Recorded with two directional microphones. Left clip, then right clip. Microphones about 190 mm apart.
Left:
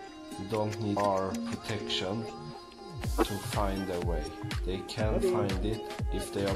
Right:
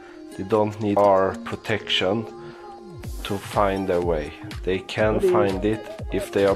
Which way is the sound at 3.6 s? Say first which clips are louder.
Right 12 dB; 20° right (ahead or behind).